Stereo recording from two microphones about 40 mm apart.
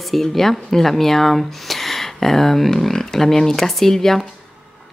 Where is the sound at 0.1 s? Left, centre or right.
Centre.